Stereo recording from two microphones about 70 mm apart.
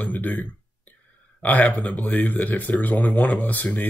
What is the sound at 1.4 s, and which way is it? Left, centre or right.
Speech, left.